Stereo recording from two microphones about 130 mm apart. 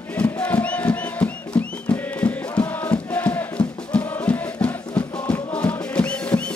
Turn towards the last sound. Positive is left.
turn(degrees=10)  # may be behind; listen again after turning